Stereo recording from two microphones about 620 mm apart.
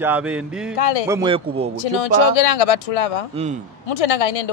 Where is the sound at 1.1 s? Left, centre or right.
Centre.